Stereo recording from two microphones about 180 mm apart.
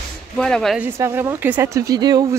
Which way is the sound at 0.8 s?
15° right (ahead or behind).